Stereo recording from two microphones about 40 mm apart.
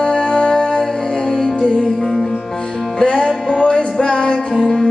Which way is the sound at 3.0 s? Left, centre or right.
Left.